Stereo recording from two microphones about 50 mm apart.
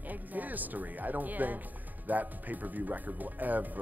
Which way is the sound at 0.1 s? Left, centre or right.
Right.